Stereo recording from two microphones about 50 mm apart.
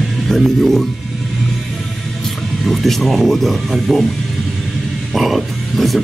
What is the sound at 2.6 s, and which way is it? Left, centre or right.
Speech, centre.